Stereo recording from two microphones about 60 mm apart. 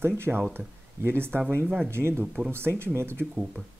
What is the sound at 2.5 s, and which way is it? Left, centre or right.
Speech, right.